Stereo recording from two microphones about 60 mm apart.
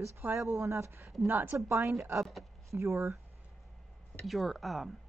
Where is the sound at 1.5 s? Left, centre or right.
Right.